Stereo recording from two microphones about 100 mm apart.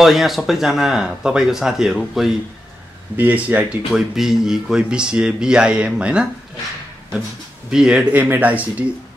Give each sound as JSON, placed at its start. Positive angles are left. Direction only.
{"t": 0.0, "sound": "speech", "side_deg": 0}
{"t": 3.2, "sound": "speech", "side_deg": -15}
{"t": 3.9, "sound": "speech", "side_deg": -5}
{"t": 7.7, "sound": "speech", "side_deg": -10}